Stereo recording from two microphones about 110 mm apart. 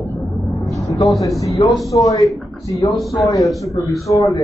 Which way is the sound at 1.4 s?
30° left (ahead or behind).